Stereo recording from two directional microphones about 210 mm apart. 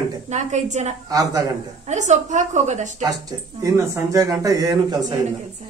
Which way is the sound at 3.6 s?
15° right (ahead or behind).